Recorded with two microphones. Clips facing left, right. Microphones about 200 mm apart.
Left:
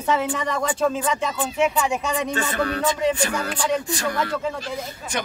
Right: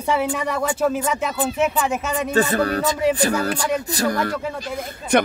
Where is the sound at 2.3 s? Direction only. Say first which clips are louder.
Right 5 dB; 35° right (ahead or behind).